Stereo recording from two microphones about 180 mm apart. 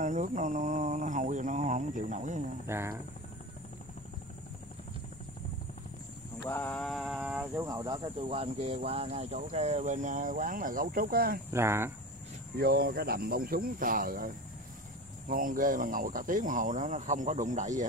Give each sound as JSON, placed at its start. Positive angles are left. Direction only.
{"t": 0.0, "sound": "speech", "side_deg": -40}
{"t": 2.6, "sound": "speech", "side_deg": -15}
{"t": 6.4, "sound": "speech", "side_deg": 10}
{"t": 11.5, "sound": "speech", "side_deg": -15}
{"t": 12.5, "sound": "speech", "side_deg": -55}